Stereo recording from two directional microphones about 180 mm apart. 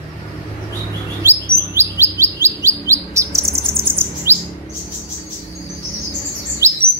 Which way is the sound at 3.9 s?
15° right (ahead or behind).